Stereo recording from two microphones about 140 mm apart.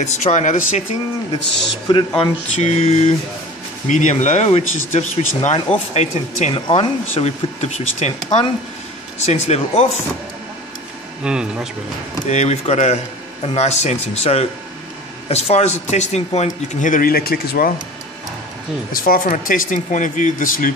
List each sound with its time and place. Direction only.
0.0 s speech: 55° left (ahead or behind)
1.9 s speech: 35° left (ahead or behind)
2.6 s speech: 50° left (ahead or behind)
3.8 s speech: 65° left (ahead or behind)
9.2 s speech: 50° left (ahead or behind)
11.2 s speech: 5° right (ahead or behind)
12.3 s speech: 50° left (ahead or behind); by 17.7 s 90° left
18.9 s speech: 85° left